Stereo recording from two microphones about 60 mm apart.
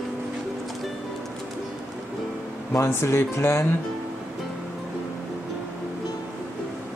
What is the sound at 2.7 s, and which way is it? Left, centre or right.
Speech, left.